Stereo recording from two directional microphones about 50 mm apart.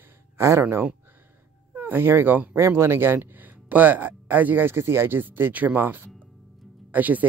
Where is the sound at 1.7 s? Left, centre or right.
Right.